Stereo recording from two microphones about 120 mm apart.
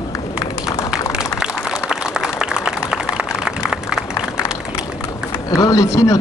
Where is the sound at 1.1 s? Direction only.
5° right (ahead or behind).